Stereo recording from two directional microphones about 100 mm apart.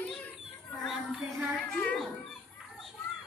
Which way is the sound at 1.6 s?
10° left (ahead or behind).